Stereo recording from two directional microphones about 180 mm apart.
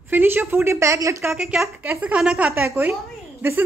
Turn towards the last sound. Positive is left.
turn(degrees=-10)  # may be behind; listen again after turning